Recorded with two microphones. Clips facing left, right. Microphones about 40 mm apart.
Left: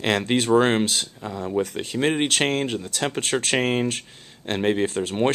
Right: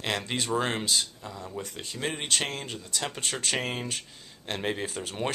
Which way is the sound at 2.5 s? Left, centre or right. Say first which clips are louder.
Left 12 dB; left.